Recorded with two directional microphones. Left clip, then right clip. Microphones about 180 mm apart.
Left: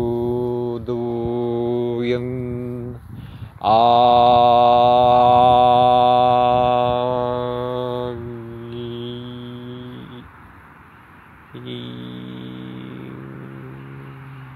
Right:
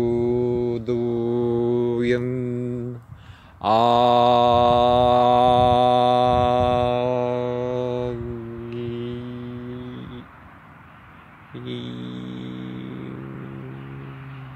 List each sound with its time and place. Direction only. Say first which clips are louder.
0.0 s mantra: even; 10° right (ahead or behind)
3.6 s mantra: left 4 dB; 15° right (ahead or behind)
8.6 s music: even; 35° right (ahead or behind)
11.6 s a sound: even; 10° right (ahead or behind)
12.4 s hum: even; 10° right (ahead or behind)